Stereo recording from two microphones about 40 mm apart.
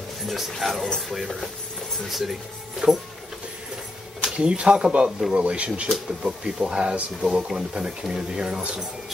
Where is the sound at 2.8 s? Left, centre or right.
Right.